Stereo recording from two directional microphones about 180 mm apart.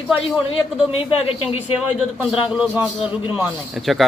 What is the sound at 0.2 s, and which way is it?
A man's voice, 30° left (ahead or behind).